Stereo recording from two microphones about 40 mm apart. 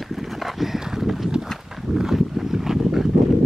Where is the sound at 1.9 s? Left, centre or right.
Centre.